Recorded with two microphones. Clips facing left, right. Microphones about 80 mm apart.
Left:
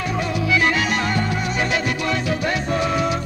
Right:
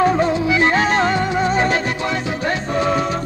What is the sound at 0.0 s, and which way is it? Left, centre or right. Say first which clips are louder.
Music: right 8 dB; right.